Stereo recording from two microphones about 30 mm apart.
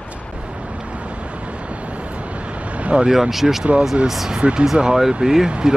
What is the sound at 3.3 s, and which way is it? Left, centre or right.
Speech, centre.